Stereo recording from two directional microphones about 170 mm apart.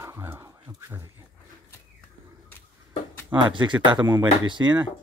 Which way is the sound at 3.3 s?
30° right (ahead or behind).